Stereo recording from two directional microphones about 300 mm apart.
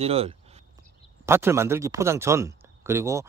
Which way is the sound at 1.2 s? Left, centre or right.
Centre.